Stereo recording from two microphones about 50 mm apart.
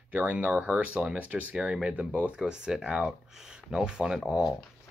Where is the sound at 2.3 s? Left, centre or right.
Centre.